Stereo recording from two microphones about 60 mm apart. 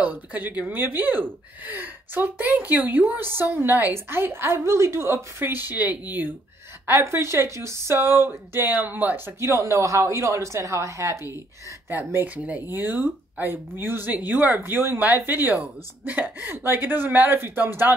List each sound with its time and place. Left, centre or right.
0.0 s speech: right
6.9 s speech: right
9.4 s speech: right
12.7 s speech: right